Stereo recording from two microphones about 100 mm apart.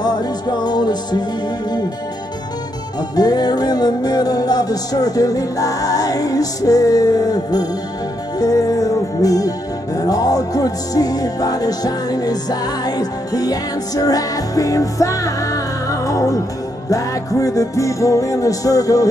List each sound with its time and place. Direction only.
0.0 s music: 45° left (ahead or behind)
3.2 s music: 40° left (ahead or behind)